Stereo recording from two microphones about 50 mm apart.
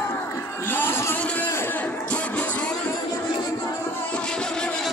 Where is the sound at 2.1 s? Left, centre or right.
Left.